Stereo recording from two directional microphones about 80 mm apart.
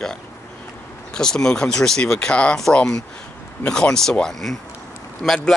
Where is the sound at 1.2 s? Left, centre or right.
Centre.